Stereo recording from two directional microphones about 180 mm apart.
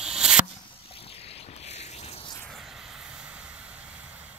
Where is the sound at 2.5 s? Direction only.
Centre (ahead or behind).